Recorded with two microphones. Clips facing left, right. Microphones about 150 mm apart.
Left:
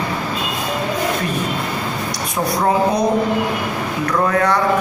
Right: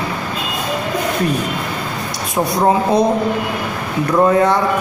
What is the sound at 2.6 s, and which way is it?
Speech, 25° right (ahead or behind).